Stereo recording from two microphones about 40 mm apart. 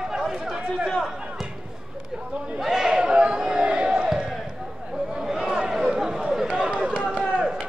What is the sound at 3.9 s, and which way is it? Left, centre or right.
Battle cry, centre.